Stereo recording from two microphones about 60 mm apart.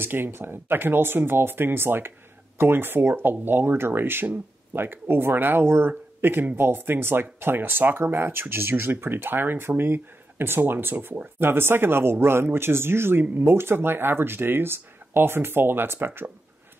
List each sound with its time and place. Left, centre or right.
0.0 s speech: right